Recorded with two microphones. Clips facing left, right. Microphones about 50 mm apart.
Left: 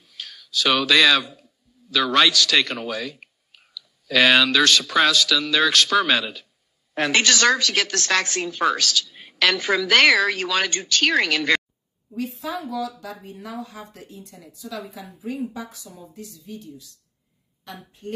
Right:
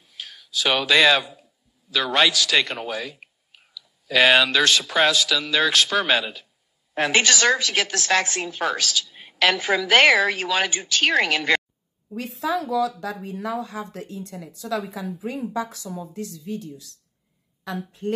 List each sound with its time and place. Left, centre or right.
0.0 s a sound: centre
3.7 s a woman's voice: right
12.2 s a woman's voice: right